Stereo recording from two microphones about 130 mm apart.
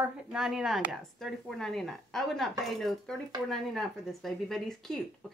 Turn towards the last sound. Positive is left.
turn(degrees=5)  # may be behind; listen again after turning